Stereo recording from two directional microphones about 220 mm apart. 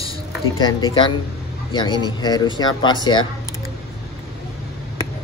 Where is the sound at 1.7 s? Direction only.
20° left (ahead or behind).